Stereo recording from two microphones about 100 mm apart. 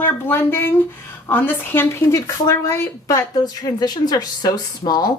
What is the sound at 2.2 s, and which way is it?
A woman's voice, 35° left (ahead or behind).